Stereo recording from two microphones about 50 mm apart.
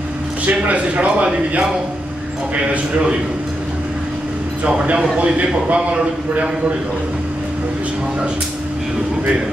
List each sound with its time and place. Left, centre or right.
0.5 s a man's voice: right
4.6 s a man's voice: right